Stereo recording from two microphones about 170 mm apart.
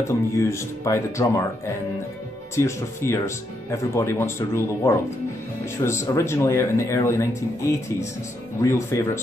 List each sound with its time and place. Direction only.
0.4 s speech: 15° left (ahead or behind)
2.5 s speech: 15° left (ahead or behind)